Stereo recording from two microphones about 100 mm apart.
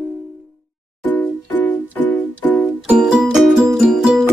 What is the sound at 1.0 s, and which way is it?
Music, 15° left (ahead or behind).